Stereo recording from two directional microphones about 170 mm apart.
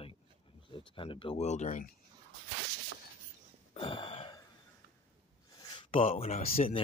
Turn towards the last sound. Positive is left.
turn(degrees=40)  # may be behind; listen again after turning